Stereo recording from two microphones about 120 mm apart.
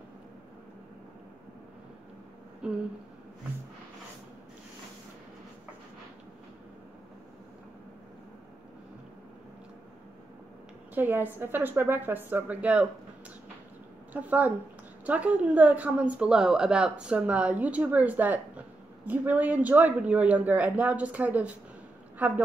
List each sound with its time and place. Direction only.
2.6 s a woman's voice: 10° right (ahead or behind)
11.0 s a woman's voice: 15° right (ahead or behind)
14.1 s a woman's voice: 15° right (ahead or behind)